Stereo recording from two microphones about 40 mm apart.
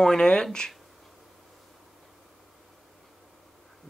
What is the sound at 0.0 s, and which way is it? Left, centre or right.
Speech, centre.